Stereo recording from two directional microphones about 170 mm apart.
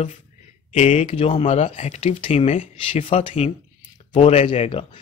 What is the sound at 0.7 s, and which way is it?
Speech, 40° left (ahead or behind).